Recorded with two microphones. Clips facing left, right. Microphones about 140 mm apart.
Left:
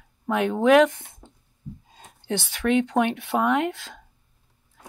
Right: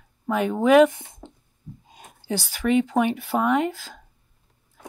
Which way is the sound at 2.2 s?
Centre (ahead or behind).